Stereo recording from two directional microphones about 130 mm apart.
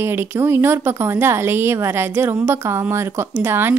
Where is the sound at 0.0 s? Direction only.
15° right (ahead or behind).